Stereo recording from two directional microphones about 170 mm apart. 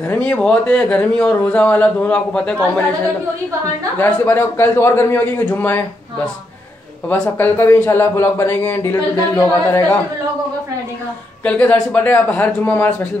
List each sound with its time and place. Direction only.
0.1 s a man's voice: 5° left (ahead or behind)
4.0 s a man's voice: 10° left (ahead or behind)
7.1 s a man's voice: 10° left (ahead or behind)
11.4 s a man's voice: 10° left (ahead or behind)